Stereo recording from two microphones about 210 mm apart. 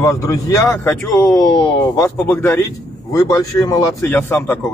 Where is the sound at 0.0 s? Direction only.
15° left (ahead or behind).